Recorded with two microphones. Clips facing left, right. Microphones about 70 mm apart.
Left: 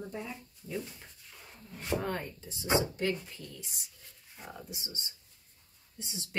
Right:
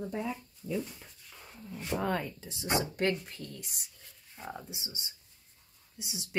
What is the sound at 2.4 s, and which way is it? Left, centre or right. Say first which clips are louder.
Speech: left 2 dB; right.